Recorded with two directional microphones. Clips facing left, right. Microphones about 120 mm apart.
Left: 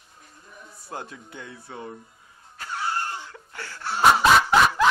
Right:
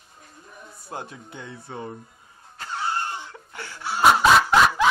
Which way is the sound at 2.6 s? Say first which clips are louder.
Right 1 dB; 25° right (ahead or behind).